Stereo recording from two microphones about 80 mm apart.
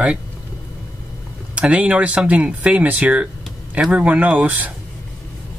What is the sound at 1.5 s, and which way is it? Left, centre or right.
Speech, centre.